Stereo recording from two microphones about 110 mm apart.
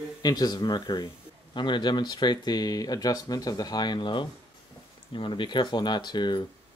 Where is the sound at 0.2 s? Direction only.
35° left (ahead or behind).